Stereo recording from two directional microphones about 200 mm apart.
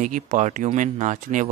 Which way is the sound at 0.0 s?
35° right (ahead or behind).